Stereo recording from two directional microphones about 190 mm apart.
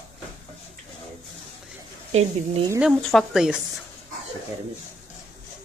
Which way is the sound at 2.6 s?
5° right (ahead or behind).